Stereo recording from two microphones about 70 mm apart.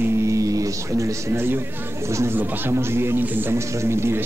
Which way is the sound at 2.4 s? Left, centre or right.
Right.